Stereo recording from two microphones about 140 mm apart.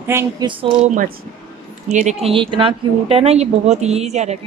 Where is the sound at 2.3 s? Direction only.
35° right (ahead or behind).